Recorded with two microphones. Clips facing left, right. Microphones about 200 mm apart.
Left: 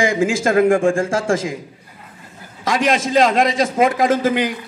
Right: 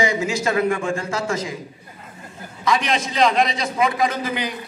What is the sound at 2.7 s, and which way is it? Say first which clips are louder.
A man's voice: left 4 dB; 50° left (ahead or behind).